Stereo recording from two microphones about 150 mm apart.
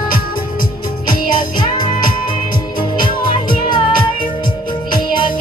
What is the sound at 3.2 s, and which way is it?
Music, 30° left (ahead or behind).